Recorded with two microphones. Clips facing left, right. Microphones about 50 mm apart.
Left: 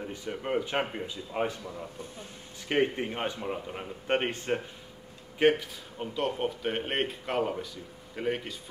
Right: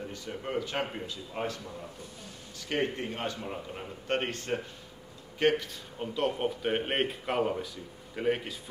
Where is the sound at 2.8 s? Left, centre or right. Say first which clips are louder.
Left 4 dB; centre.